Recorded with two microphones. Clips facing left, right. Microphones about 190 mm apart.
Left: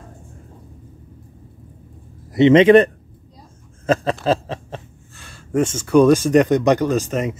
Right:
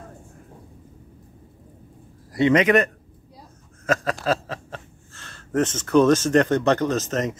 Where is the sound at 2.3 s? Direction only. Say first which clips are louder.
Left 7 dB; 25° left (ahead or behind).